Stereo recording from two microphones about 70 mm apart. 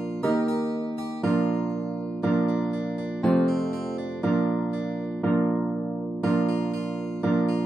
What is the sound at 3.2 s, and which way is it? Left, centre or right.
Music, centre.